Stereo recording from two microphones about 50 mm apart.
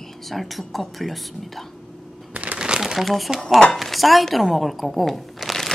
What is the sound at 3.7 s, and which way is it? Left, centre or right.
Speech, centre.